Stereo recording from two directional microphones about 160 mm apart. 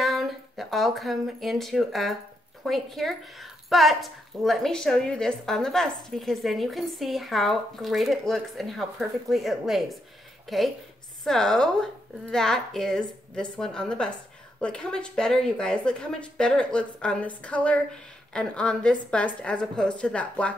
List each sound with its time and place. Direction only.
0.0 s a woman's voice: centre (ahead or behind)